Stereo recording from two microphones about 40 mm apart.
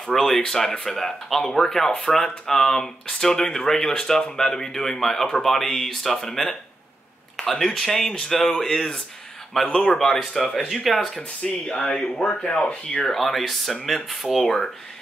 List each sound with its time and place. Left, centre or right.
0.1 s speech: centre
0.4 s speech: centre
11.4 s speech: centre
12.1 s speech: left
13.1 s speech: centre
14.4 s speech: centre